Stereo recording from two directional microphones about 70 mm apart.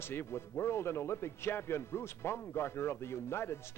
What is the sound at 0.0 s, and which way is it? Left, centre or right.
A man's voice, left.